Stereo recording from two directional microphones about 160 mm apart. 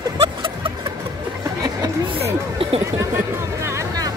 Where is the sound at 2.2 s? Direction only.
40° right (ahead or behind).